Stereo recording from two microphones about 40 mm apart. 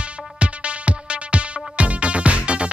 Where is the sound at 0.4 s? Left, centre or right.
Right.